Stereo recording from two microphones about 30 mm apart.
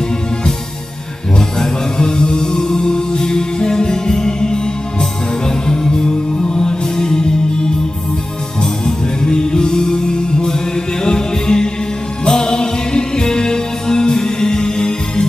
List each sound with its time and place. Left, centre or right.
2.0 s music: left
5.7 s music: left
8.8 s music: left